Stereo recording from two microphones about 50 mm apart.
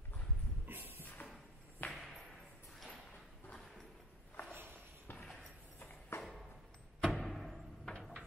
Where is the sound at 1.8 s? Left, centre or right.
Left.